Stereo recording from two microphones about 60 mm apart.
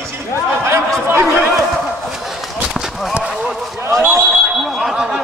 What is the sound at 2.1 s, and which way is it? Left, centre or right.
Run, centre.